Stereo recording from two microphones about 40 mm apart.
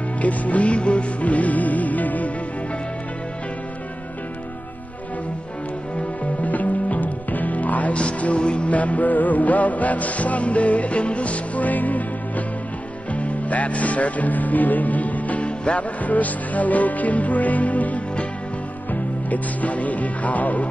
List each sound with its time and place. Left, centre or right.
0.2 s music: left
5.9 s music: left
13.1 s speech: left
16.0 s music: left
19.2 s music: left